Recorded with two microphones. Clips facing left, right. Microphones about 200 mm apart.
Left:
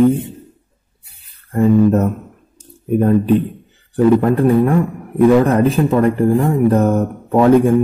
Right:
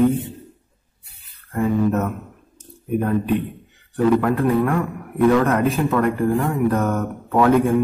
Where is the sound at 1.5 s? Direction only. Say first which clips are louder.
Left 7 dB; 35° left (ahead or behind).